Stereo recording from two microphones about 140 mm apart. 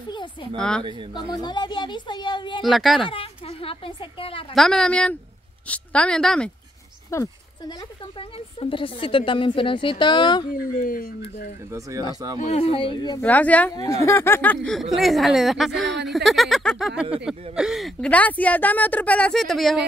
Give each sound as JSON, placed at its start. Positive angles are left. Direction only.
{"t": 0.1, "sound": "speech", "side_deg": 35}
{"t": 0.6, "sound": "speech", "side_deg": 5}
{"t": 1.1, "sound": "a woman's voice", "side_deg": 35}
{"t": 2.6, "sound": "speech", "side_deg": 0}
{"t": 3.0, "sound": "a woman's voice", "side_deg": 40}
{"t": 4.6, "sound": "a woman's voice", "side_deg": 5}
{"t": 7.1, "sound": "a sound", "side_deg": 20}
{"t": 8.2, "sound": "a woman's voice", "side_deg": 40}
{"t": 10.5, "sound": "speech", "side_deg": 85}
{"t": 12.4, "sound": "speech", "side_deg": 50}
{"t": 13.2, "sound": "a woman's voice", "side_deg": 10}
{"t": 14.8, "sound": "speech", "side_deg": 0}
{"t": 18.1, "sound": "a woman's voice", "side_deg": 10}